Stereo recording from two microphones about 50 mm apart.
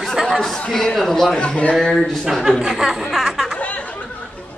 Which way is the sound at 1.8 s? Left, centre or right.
Centre.